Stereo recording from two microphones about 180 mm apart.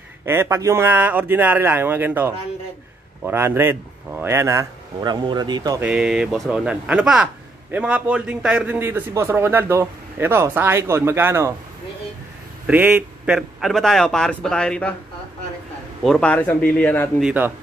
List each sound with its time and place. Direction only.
0.2 s a man's voice: 15° right (ahead or behind)
5.8 s a man's voice: 5° right (ahead or behind)
12.6 s a man's voice: 10° right (ahead or behind); by 15.0 s 5° left (ahead or behind)
16.0 s a man's voice: 5° left (ahead or behind)
17.2 s a man's voice: 5° right (ahead or behind)